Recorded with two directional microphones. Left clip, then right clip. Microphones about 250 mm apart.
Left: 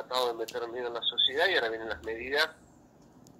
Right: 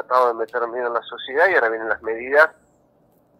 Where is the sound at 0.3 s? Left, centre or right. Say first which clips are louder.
Right 11 dB; right.